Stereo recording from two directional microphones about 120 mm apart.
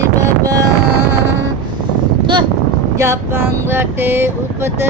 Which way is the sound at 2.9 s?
20° right (ahead or behind).